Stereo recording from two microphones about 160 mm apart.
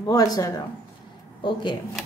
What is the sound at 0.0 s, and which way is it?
A woman's voice, 20° left (ahead or behind).